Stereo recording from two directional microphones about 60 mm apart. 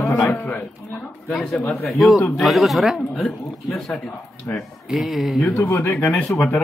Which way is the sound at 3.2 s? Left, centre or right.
Centre.